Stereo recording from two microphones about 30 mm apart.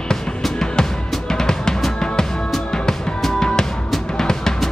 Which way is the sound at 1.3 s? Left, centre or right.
Left.